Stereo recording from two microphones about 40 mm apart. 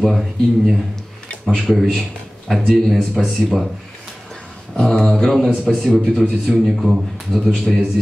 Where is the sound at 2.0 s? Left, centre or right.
Centre.